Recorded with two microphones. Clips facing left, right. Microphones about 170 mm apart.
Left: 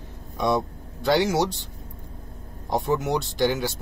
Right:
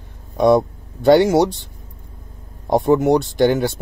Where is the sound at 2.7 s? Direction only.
55° right (ahead or behind).